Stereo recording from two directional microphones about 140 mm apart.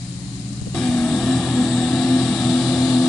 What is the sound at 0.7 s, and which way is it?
Vehicle, 5° left (ahead or behind).